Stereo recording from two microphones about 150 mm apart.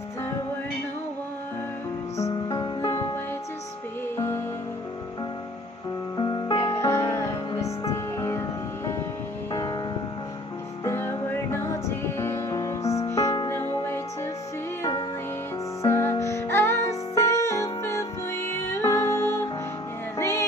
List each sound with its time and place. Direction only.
2.4 s music: 30° left (ahead or behind)
6.1 s music: 30° left (ahead or behind)
6.9 s music: 20° left (ahead or behind)
9.5 s music: 30° left (ahead or behind)
10.8 s music: 15° left (ahead or behind)